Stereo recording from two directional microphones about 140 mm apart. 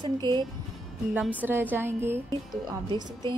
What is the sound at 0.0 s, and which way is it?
Speech, 30° right (ahead or behind).